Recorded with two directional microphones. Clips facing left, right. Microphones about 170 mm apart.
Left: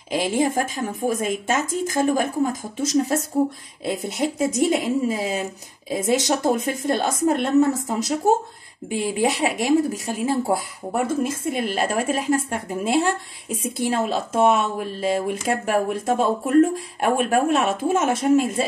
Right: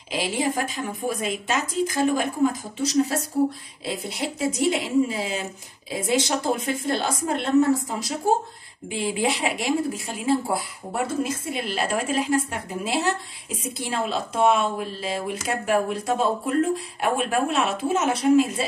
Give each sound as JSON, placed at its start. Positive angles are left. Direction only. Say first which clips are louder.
{"t": 0.1, "sound": "speech", "louder": "left 4 dB", "side_deg": 50}
{"t": 8.8, "sound": "speech", "louder": "left 3 dB", "side_deg": 45}